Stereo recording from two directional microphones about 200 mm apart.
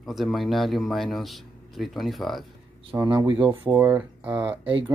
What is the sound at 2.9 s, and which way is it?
Speech, 15° right (ahead or behind).